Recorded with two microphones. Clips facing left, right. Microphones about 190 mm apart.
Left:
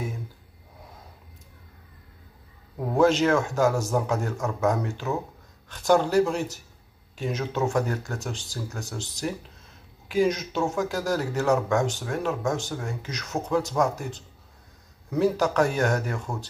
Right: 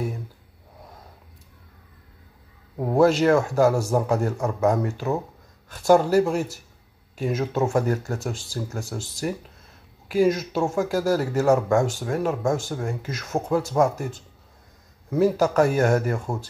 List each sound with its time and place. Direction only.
3.0 s a man's voice: 5° right (ahead or behind)
16.3 s speech: 40° right (ahead or behind)